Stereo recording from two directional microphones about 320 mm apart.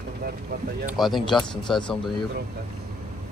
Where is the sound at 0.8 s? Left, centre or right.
Centre.